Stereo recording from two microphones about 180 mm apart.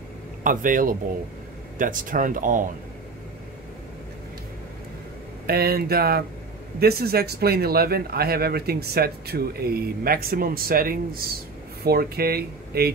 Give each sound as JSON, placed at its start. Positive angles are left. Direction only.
{"t": 0.4, "sound": "speech", "side_deg": -50}
{"t": 5.5, "sound": "speech", "side_deg": -60}